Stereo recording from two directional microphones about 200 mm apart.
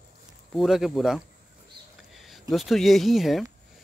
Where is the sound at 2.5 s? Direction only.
Centre (ahead or behind).